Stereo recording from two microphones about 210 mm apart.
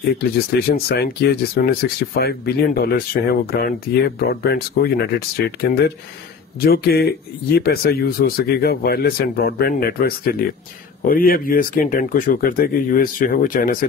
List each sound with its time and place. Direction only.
0.2 s speech: 50° left (ahead or behind)